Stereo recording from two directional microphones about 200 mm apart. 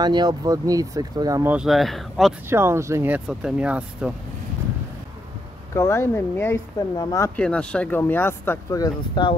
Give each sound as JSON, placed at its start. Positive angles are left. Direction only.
{"t": 0.0, "sound": "speech", "side_deg": -20}
{"t": 2.5, "sound": "speech", "side_deg": -15}
{"t": 5.8, "sound": "speech", "side_deg": 15}
{"t": 7.3, "sound": "speech", "side_deg": 5}